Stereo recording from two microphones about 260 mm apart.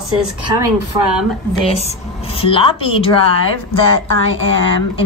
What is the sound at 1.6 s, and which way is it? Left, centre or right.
A woman's voice, left.